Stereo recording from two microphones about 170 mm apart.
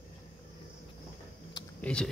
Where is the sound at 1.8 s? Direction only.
5° left (ahead or behind).